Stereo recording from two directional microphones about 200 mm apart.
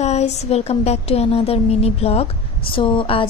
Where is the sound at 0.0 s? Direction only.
35° left (ahead or behind).